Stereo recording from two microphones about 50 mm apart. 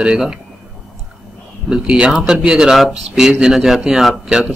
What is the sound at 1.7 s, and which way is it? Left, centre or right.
Speech, centre.